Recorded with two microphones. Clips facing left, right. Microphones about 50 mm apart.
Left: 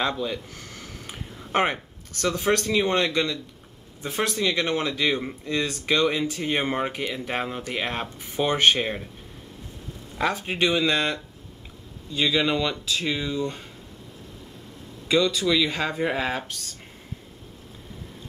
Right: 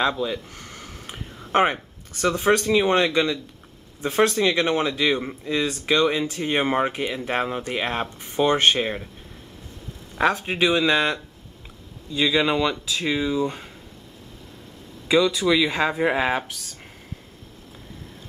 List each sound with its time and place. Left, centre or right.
0.0 s a sound: centre
2.5 s speech: centre
4.2 s speech: right
4.5 s speech: centre
8.5 s speech: centre
10.5 s speech: centre
12.2 s speech: centre
15.0 s speech: centre